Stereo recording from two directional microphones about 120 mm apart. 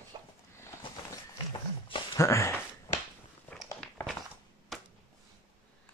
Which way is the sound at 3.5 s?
10° left (ahead or behind).